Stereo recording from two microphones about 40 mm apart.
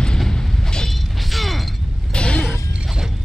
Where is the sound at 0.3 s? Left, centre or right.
Centre.